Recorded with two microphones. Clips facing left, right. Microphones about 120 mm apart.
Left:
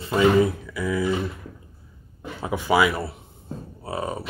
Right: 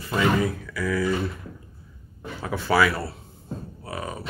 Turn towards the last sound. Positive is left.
turn(degrees=25)  # may be behind; listen again after turning